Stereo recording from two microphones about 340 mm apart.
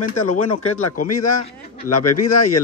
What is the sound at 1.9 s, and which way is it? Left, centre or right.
Speech, left.